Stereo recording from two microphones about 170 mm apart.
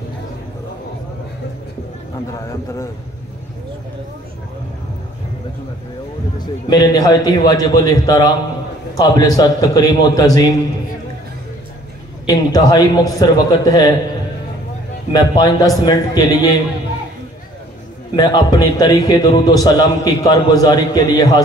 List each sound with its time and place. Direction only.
6.4 s a man's voice: 25° left (ahead or behind)
12.3 s a man's voice: 20° left (ahead or behind)
15.1 s a man's voice: 20° left (ahead or behind)
18.1 s a man's voice: 25° left (ahead or behind)